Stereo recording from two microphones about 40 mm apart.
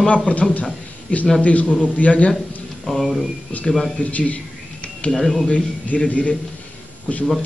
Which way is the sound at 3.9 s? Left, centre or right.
Left.